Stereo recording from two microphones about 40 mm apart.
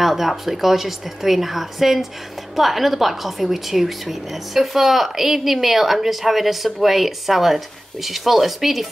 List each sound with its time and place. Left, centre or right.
0.0 s a woman's voice: centre